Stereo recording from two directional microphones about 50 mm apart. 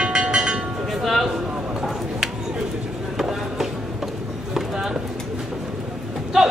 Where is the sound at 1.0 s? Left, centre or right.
Centre.